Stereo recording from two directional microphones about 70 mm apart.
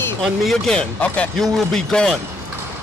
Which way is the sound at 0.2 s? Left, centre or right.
Centre.